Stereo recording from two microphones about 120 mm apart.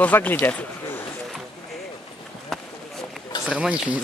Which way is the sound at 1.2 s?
5° left (ahead or behind).